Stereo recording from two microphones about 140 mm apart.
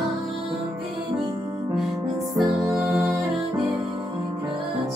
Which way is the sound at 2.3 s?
Centre (ahead or behind).